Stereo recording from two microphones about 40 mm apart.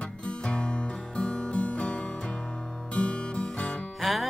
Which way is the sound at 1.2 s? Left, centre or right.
Left.